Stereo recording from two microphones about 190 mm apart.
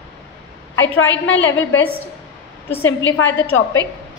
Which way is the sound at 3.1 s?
85° left.